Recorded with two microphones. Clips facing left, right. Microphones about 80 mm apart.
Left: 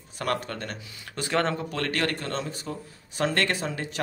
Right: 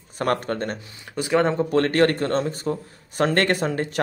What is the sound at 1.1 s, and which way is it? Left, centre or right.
Speech, centre.